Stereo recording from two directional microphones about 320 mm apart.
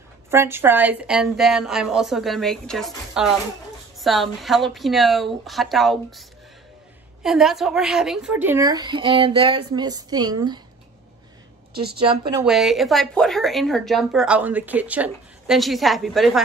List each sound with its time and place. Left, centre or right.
0.3 s a woman's voice: centre
7.2 s a woman's voice: centre
11.7 s a woman's voice: right
12.0 s a woman's voice: centre
12.4 s a woman's voice: centre